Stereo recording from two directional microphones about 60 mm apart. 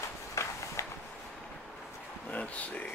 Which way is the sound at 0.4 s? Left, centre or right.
Left.